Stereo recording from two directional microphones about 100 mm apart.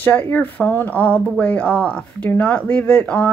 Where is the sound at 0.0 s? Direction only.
20° left (ahead or behind).